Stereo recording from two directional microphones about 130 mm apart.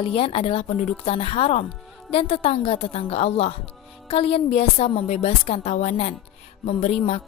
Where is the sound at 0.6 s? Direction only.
65° left (ahead or behind).